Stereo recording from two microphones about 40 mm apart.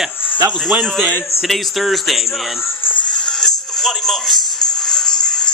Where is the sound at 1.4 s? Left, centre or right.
Centre.